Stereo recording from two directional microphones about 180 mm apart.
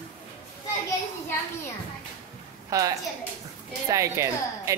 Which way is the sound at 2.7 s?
20° right (ahead or behind).